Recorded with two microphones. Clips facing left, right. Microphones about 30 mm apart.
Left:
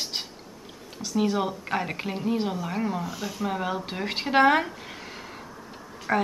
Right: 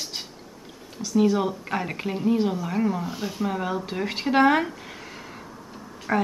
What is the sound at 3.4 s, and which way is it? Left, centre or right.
A woman's voice, centre.